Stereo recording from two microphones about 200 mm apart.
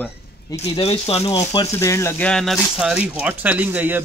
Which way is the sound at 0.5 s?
30° left (ahead or behind).